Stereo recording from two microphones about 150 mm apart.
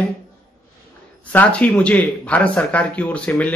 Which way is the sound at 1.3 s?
10° left (ahead or behind).